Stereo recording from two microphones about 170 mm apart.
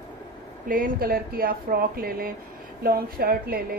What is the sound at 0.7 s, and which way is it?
A woman's voice, 60° right (ahead or behind).